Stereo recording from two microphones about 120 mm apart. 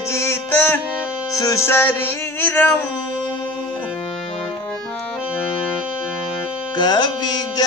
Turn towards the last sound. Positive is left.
turn(degrees=35)  # may be behind; listen again after turning